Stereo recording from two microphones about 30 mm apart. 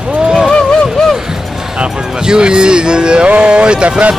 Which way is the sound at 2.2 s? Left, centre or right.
Right.